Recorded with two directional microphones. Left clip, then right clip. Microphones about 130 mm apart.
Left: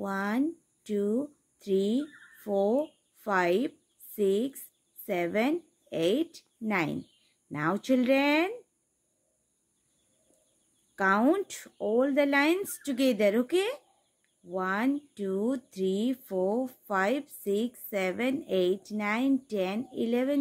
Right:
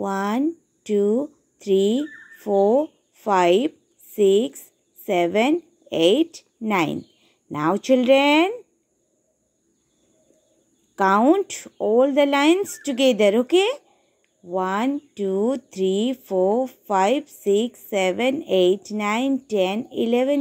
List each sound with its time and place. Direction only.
0.0 s speech: 20° right (ahead or behind)
2.4 s a sound: 20° right (ahead or behind)
5.0 s speech: 20° right (ahead or behind)
11.0 s speech: 20° right (ahead or behind)